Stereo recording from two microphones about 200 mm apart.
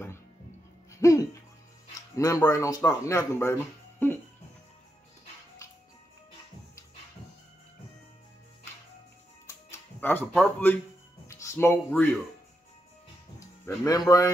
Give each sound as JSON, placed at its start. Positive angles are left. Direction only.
{"t": 0.9, "sound": "music", "side_deg": 15}
{"t": 2.0, "sound": "speech", "side_deg": 15}
{"t": 9.5, "sound": "music", "side_deg": 10}
{"t": 11.4, "sound": "speech", "side_deg": 10}
{"t": 13.7, "sound": "speech", "side_deg": 15}